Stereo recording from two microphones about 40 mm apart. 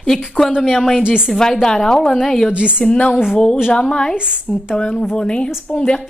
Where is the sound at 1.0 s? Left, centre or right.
Right.